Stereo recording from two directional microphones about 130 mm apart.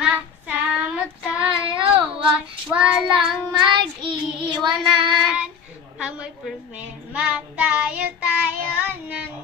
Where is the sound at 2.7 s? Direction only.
10° right (ahead or behind).